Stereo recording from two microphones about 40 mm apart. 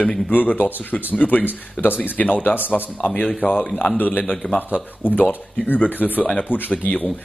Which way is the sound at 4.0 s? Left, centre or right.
Left.